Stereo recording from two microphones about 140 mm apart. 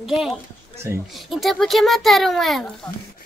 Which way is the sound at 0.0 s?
5° right (ahead or behind).